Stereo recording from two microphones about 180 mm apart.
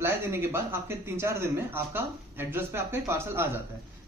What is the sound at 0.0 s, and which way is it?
Speech, 15° right (ahead or behind).